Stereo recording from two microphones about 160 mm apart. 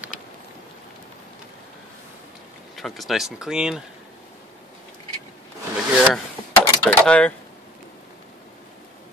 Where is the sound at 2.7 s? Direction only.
Centre (ahead or behind).